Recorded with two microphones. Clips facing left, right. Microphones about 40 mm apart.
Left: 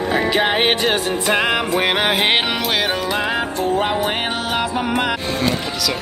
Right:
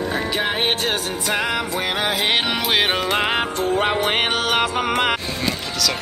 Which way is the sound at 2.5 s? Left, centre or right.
Centre.